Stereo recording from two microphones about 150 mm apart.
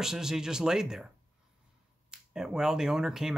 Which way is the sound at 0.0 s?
5° right (ahead or behind).